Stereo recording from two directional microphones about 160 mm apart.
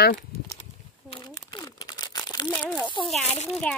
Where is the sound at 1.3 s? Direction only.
25° left (ahead or behind).